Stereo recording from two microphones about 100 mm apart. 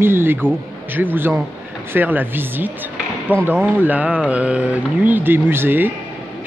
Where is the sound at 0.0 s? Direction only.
20° right (ahead or behind).